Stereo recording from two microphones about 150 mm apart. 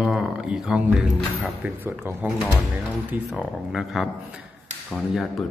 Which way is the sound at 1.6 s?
15° right (ahead or behind).